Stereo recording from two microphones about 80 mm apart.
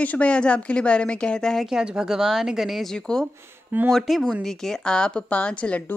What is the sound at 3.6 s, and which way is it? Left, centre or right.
Speech, right.